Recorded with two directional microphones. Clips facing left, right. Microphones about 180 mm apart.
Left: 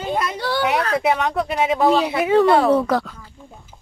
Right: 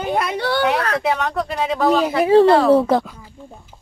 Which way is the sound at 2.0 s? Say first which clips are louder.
Right 3 dB; 35° right (ahead or behind).